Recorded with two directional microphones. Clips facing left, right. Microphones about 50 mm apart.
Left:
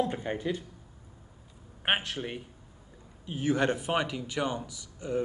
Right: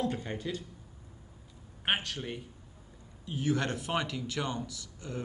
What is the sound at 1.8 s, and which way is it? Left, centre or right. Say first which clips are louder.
Speech: left 3 dB; left.